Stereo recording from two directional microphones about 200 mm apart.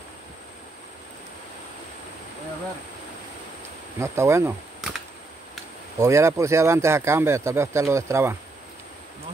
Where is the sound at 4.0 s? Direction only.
15° right (ahead or behind).